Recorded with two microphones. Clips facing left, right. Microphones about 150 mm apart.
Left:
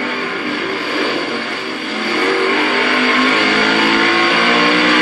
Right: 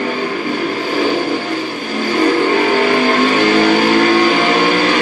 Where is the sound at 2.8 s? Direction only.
40° right (ahead or behind).